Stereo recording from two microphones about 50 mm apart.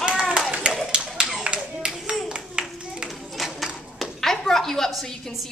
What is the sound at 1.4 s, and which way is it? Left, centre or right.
Clapping, right.